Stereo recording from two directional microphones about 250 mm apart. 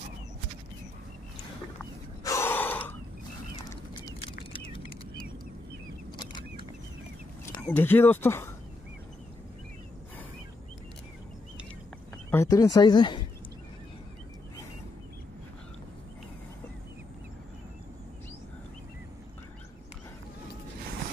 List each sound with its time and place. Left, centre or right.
2.2 s gasp: centre
4.5 s a sound: left
6.1 s vehicle: centre
7.5 s speech: centre
12.3 s speech: centre